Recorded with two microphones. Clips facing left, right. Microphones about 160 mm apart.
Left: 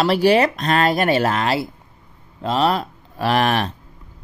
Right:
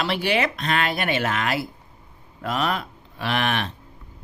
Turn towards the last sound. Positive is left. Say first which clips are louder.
# left 6 dB
turn(degrees=40)  # may be behind; listen again after turning